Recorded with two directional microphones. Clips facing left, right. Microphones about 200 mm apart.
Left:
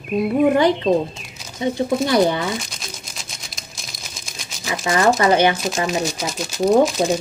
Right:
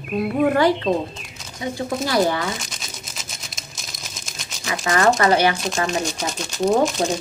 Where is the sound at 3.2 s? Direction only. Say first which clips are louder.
Even; centre (ahead or behind).